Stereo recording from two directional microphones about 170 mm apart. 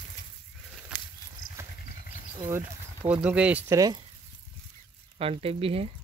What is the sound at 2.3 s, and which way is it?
Speech, 15° right (ahead or behind).